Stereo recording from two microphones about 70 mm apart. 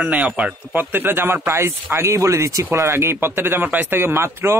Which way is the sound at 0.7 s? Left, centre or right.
Right.